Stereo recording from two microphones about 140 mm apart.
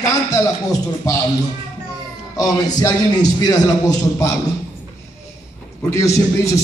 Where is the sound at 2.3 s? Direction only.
25° left (ahead or behind).